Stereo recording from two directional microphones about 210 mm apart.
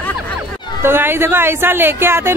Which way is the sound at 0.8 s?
10° right (ahead or behind).